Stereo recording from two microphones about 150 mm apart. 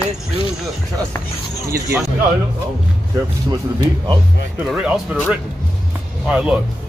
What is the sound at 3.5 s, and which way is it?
Speech, 25° right (ahead or behind).